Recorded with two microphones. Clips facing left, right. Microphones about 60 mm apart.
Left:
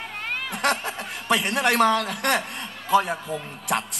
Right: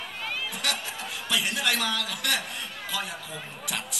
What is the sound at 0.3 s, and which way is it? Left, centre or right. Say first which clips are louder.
A man's voice: left 8 dB; left.